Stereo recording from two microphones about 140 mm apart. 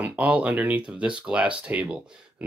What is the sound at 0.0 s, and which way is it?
Speech, 10° right (ahead or behind).